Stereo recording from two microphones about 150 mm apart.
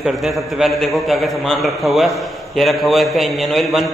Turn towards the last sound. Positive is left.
turn(degrees=0)  # may be behind; listen again after turning